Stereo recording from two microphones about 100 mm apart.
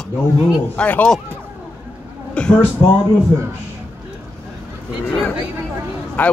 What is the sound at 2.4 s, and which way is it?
Speech, 10° left (ahead or behind).